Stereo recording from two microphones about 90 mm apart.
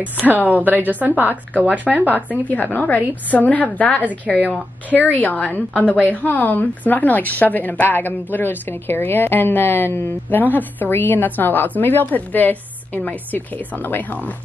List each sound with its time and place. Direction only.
0.0 s a woman's voice: 20° right (ahead or behind)
2.4 s a woman's voice: 20° left (ahead or behind)